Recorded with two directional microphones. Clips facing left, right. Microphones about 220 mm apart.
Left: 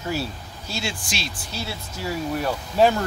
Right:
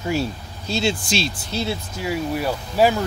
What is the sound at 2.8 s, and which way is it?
Speech, 5° right (ahead or behind).